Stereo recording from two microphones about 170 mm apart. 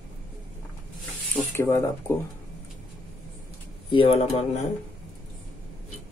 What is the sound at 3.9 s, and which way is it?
Speech, 30° left (ahead or behind).